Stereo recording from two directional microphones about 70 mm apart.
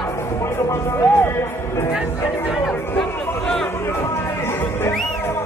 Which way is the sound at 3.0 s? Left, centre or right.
Centre.